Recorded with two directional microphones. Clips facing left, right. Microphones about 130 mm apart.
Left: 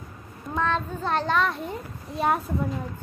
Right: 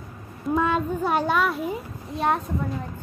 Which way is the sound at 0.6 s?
10° right (ahead or behind).